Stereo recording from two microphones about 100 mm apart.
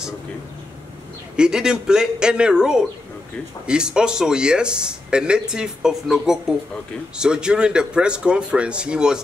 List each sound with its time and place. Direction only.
1.3 s speech: 5° right (ahead or behind)